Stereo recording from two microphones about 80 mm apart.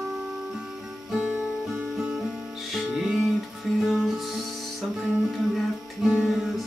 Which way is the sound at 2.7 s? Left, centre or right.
Centre.